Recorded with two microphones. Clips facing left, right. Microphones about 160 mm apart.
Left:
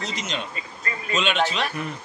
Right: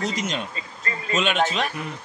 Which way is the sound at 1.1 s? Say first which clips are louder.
Right 1 dB; 45° right (ahead or behind).